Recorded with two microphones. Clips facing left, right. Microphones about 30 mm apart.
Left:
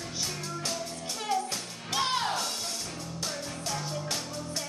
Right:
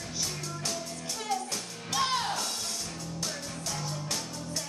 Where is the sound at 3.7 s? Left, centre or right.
Centre.